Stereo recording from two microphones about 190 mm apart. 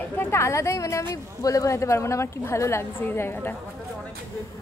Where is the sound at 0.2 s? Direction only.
15° left (ahead or behind).